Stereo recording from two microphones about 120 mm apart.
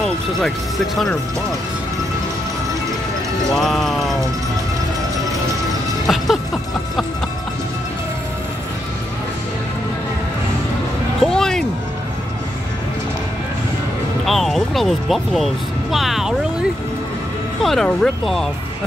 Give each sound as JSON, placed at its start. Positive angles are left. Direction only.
{"t": 3.5, "sound": "music", "side_deg": 0}
{"t": 6.0, "sound": "music", "side_deg": 0}
{"t": 11.2, "sound": "music", "side_deg": 5}
{"t": 14.2, "sound": "vehicle", "side_deg": 0}
{"t": 17.6, "sound": "speech", "side_deg": 5}